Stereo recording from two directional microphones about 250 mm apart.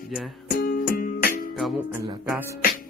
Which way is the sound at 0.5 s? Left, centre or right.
Left.